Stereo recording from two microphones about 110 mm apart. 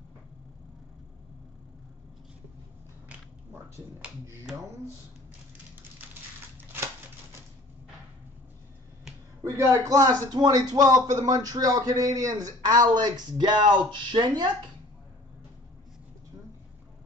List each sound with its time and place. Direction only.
9.4 s a man's voice: 30° right (ahead or behind); by 14.5 s 45° right (ahead or behind)